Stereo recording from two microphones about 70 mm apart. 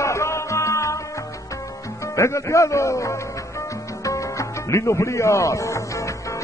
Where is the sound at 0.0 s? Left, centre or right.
Left.